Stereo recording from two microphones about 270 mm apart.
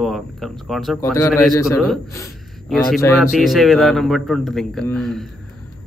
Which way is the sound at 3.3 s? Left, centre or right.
Centre.